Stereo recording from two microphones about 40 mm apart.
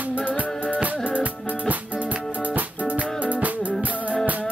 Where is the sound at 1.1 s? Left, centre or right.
Right.